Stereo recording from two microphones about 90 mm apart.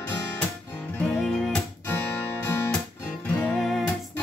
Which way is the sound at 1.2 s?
5° left (ahead or behind).